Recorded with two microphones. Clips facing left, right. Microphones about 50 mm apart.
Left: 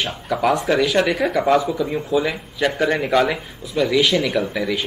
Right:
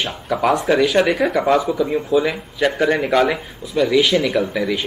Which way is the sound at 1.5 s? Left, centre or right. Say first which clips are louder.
Right 1 dB; centre.